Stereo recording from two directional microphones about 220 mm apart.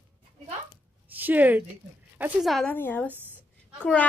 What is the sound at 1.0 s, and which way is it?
A woman's voice, 10° right (ahead or behind).